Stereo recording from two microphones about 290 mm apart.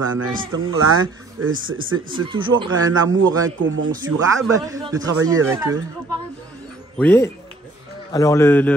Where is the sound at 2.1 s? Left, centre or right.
Centre.